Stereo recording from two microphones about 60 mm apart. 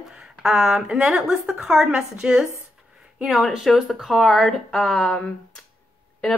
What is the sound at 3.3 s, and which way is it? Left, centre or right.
Speech, centre.